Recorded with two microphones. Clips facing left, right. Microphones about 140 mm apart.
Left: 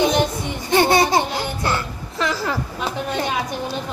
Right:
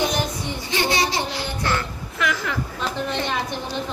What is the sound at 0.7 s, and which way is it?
Music, 55° left (ahead or behind).